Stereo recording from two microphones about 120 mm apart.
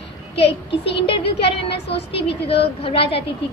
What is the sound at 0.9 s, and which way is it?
A woman's voice, 50° left (ahead or behind).